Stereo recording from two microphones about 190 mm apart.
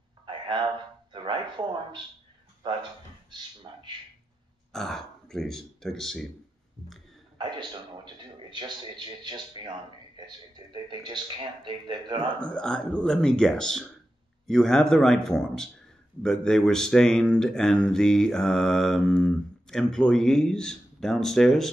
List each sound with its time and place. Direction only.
0.3 s a sound: 25° right (ahead or behind)
2.6 s speech: 25° right (ahead or behind)
4.7 s speech: 5° left (ahead or behind)
7.3 s a man's voice: 25° right (ahead or behind)
12.4 s speech: 5° left (ahead or behind)